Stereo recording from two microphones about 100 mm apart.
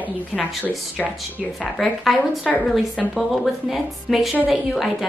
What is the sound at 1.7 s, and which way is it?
Speech, centre (ahead or behind).